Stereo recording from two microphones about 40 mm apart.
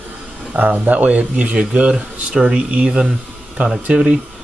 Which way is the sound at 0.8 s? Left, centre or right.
Right.